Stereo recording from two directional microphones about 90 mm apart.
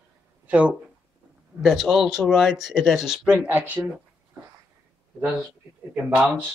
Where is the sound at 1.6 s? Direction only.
Centre (ahead or behind).